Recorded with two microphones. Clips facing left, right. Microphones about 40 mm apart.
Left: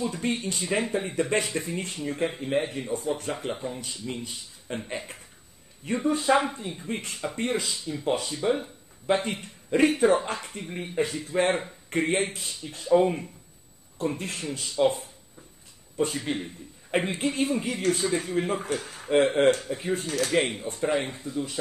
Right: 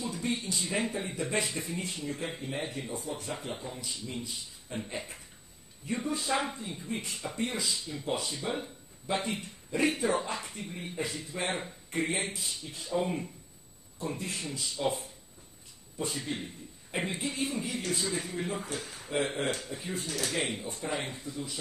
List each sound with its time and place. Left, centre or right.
0.0 s speech: left
3.5 s speech: left
3.8 s speech: left
6.4 s speech: left
6.9 s speech: left
14.1 s speech: left